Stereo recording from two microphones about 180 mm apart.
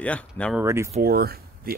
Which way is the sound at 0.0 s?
5° left (ahead or behind).